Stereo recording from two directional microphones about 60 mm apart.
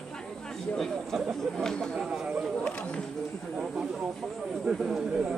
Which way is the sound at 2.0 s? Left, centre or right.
Centre.